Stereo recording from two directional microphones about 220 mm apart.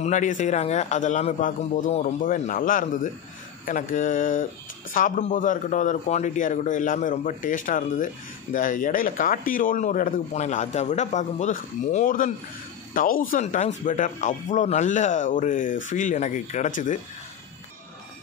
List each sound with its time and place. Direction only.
0.0 s speech: 35° left (ahead or behind)